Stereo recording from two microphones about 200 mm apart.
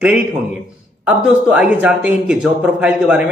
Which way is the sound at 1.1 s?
5° right (ahead or behind).